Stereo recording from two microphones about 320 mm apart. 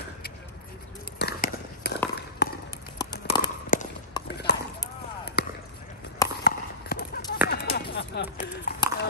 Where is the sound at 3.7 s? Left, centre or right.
Left.